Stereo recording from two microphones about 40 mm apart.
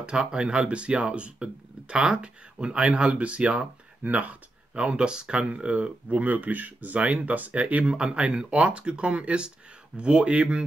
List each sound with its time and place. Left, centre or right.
0.1 s speech: right